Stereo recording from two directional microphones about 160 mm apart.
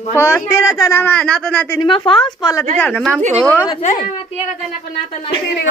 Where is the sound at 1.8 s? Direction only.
30° left (ahead or behind).